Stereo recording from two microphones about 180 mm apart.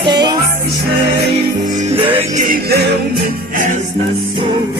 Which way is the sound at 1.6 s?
45° right (ahead or behind).